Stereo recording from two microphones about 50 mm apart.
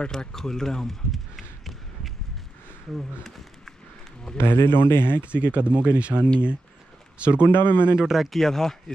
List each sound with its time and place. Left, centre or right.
0.0 s run: centre
2.9 s speech: centre
4.4 s speech: left
5.2 s speech: right
7.5 s speech: left
7.9 s speech: centre
8.3 s speech: centre